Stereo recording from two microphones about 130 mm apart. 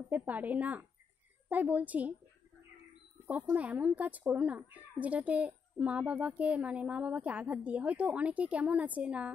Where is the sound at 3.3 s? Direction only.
15° right (ahead or behind).